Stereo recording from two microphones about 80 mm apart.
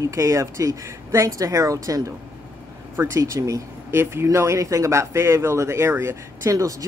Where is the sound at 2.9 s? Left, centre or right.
Right.